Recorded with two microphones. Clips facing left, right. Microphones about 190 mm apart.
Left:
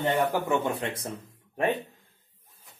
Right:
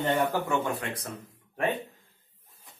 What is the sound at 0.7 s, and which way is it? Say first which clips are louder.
Speech: left 2 dB; 25° left (ahead or behind).